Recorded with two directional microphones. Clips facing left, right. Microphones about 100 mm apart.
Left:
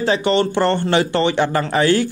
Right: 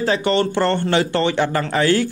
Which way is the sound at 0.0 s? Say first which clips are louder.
Left 1 dB; 20° left (ahead or behind).